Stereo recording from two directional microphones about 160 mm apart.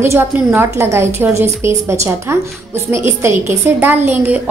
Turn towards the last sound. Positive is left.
turn(degrees=-10)  # may be behind; listen again after turning